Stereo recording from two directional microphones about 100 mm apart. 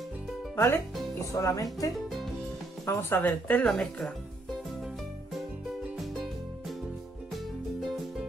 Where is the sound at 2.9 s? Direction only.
25° left (ahead or behind).